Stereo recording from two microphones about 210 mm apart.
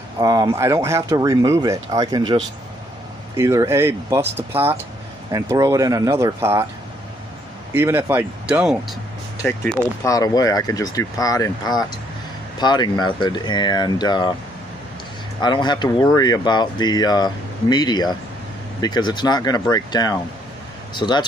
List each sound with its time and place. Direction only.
0.2 s speech: 15° right (ahead or behind)
3.3 s speech: 15° right (ahead or behind)
7.7 s speech: 10° right (ahead or behind)
9.4 s speech: 10° left (ahead or behind)
15.4 s speech: 20° left (ahead or behind)